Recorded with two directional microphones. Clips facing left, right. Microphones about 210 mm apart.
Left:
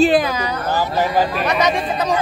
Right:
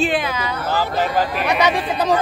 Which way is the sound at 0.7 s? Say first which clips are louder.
Left 1 dB; 15° left (ahead or behind).